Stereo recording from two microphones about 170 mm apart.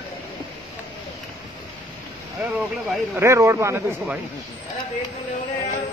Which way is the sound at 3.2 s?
15° right (ahead or behind).